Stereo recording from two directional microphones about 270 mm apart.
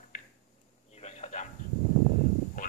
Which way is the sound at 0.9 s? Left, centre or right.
Left.